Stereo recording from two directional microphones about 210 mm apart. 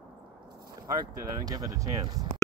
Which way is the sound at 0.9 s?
20° right (ahead or behind).